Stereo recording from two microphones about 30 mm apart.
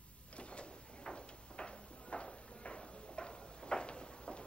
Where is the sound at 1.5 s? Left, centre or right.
Left.